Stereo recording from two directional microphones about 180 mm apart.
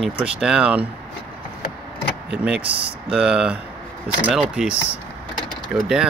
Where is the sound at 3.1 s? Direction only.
5° right (ahead or behind).